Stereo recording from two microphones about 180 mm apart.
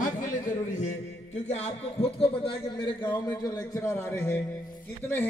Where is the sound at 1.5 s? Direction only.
40° left (ahead or behind).